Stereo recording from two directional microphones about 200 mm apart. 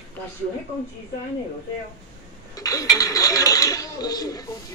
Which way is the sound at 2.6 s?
15° left (ahead or behind).